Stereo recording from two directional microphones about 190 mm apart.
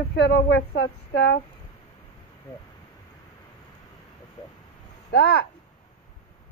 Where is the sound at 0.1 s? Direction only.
65° left (ahead or behind).